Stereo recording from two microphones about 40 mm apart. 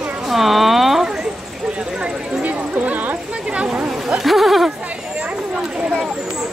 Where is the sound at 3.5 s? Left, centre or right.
Right.